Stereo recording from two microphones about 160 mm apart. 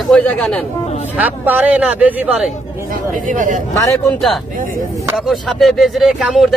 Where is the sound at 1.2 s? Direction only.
10° right (ahead or behind).